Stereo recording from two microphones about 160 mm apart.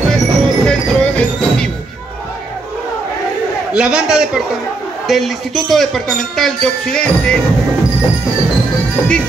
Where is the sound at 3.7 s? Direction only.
5° right (ahead or behind).